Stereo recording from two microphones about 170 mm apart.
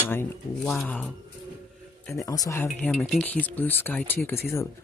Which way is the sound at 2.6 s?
10° left (ahead or behind).